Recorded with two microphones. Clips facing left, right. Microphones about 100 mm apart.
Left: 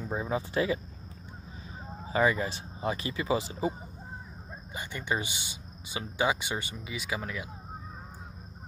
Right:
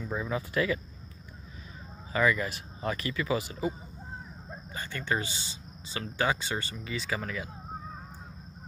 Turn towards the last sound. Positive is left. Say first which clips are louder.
# right 1 dB
turn(degrees=5)  # may be behind; listen again after turning